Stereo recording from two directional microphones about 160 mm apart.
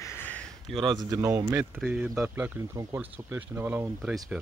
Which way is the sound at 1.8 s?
5° right (ahead or behind).